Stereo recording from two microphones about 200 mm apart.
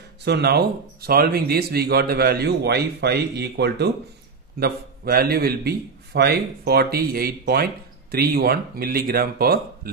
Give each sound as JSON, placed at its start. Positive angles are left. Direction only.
{"t": 0.2, "sound": "a man's voice", "side_deg": -55}